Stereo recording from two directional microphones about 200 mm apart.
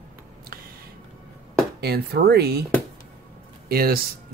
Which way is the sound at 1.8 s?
50° right (ahead or behind).